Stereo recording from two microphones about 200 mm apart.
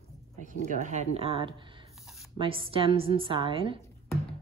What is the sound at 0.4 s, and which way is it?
Speech, 40° right (ahead or behind).